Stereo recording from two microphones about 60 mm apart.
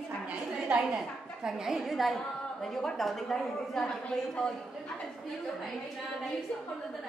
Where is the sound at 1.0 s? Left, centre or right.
Centre.